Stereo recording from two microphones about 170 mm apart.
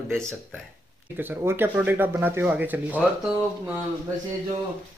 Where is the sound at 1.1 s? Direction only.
10° right (ahead or behind).